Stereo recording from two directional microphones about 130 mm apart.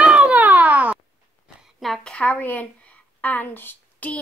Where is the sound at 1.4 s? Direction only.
Centre (ahead or behind).